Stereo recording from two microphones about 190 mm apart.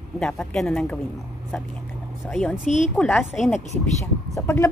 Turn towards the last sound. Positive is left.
turn(degrees=15)  # may be behind; listen again after turning